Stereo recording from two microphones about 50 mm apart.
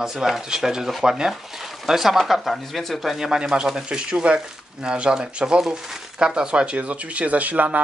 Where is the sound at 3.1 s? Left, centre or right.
Centre; by 7.8 s right.